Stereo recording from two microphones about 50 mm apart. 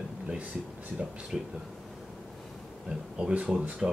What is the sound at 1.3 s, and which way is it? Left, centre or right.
Speech, centre.